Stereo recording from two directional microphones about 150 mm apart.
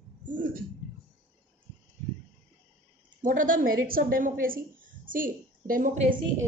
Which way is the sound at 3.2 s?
65° right (ahead or behind).